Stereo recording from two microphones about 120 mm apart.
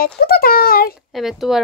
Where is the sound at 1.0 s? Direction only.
Centre (ahead or behind).